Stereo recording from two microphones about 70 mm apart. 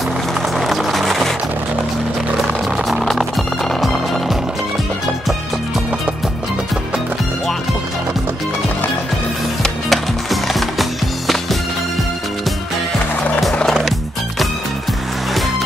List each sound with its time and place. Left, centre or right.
0.6 s music: centre
2.9 s music: centre
9.6 s wood: centre
13.4 s skateboard: centre